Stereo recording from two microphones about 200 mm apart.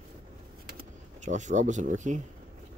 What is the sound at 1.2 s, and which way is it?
Speech, 35° right (ahead or behind).